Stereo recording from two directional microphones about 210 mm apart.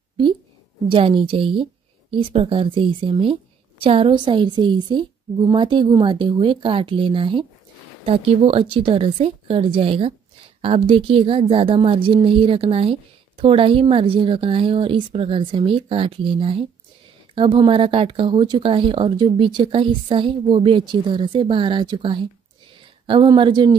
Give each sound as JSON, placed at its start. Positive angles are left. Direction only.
{"t": 0.8, "sound": "speech", "side_deg": -25}